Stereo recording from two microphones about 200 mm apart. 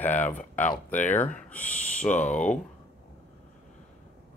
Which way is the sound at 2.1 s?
35° left (ahead or behind).